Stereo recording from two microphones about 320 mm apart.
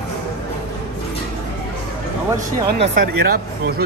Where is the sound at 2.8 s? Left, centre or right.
Right.